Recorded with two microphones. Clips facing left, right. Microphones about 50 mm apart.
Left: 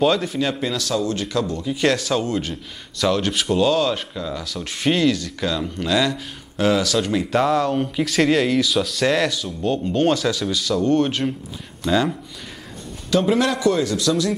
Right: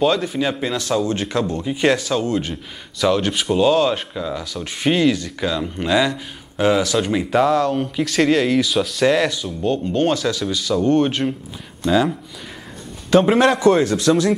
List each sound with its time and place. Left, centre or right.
0.0 s speech: centre
0.7 s speech: right
2.0 s speech: centre
7.4 s speech: centre
13.1 s a man's voice: right